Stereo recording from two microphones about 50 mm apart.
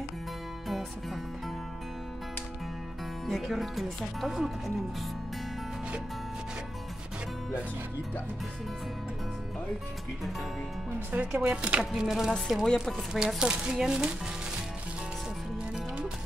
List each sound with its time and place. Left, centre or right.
3.3 s speech: centre
11.1 s speech: right; by 13.0 s centre
13.1 s speech: centre